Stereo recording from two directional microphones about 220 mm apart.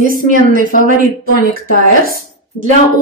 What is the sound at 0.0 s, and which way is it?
Speech, 40° right (ahead or behind).